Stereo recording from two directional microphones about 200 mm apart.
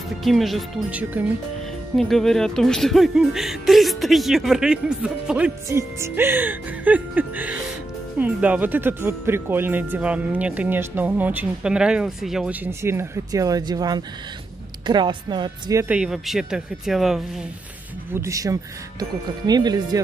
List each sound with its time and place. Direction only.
0.2 s speech: centre (ahead or behind)
18.1 s speech: 15° right (ahead or behind)